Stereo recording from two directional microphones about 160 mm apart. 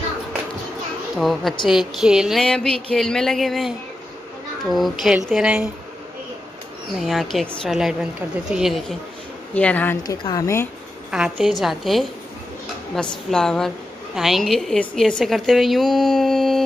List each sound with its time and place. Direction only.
1.1 s a woman's voice: centre (ahead or behind)
4.7 s a woman's voice: centre (ahead or behind)
7.0 s a woman's voice: centre (ahead or behind)
10.0 s a woman's voice: 25° left (ahead or behind)
11.1 s a woman's voice: 5° right (ahead or behind)